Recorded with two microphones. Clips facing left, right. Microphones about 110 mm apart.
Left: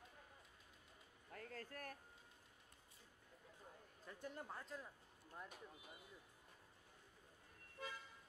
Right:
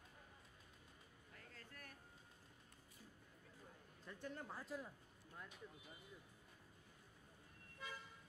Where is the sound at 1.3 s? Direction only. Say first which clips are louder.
Left 9 dB; 50° left (ahead or behind).